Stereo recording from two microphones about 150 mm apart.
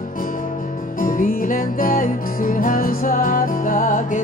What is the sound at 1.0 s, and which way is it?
Music, 65° left (ahead or behind).